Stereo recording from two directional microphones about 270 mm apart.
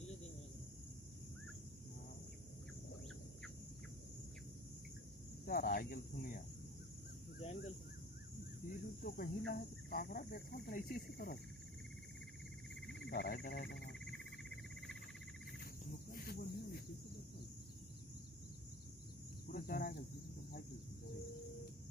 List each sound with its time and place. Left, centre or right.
5.4 s speech: left
8.6 s speech: left
13.1 s speech: left
13.9 s cricket: centre
15.6 s cricket: left
19.4 s speech: left